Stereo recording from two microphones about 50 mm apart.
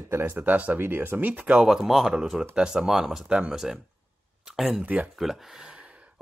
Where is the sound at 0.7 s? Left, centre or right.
Right.